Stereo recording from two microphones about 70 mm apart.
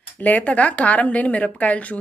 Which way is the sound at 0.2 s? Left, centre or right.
Left.